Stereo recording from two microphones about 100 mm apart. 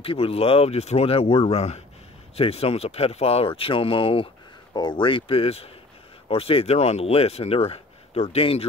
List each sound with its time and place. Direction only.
0.0 s speech: 75° left (ahead or behind); by 1.8 s 90° left
2.3 s speech: 80° left; by 4.3 s 65° left (ahead or behind)
4.7 s speech: 50° left (ahead or behind); by 8.6 s 75° left (ahead or behind)